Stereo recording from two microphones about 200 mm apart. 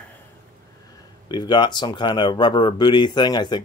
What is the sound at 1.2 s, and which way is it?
Speech, 20° left (ahead or behind).